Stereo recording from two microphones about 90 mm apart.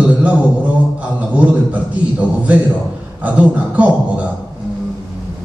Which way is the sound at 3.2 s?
15° right (ahead or behind).